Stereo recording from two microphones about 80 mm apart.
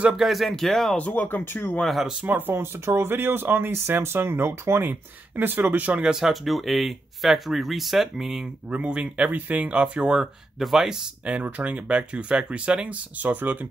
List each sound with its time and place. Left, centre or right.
0.0 s speech: centre
0.9 s speech: left
1.8 s speech: centre
2.2 s speech: right